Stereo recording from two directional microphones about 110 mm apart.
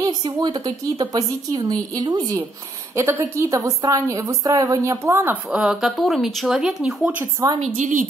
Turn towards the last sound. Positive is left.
turn(degrees=-85)